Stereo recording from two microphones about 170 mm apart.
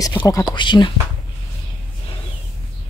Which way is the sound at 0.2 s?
25° left (ahead or behind).